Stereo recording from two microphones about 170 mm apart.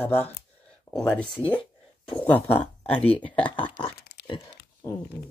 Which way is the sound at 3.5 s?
30° left (ahead or behind).